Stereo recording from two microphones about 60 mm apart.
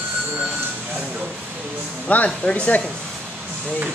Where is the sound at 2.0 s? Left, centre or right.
Left.